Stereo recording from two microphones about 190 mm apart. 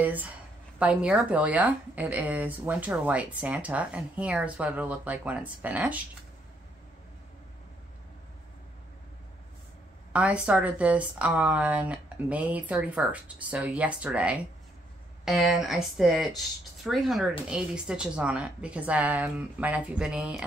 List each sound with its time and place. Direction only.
0.0 s a woman's voice: 10° right (ahead or behind)
10.1 s a woman's voice: 5° right (ahead or behind)